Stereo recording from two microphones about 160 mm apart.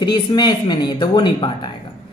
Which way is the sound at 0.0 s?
30° left (ahead or behind).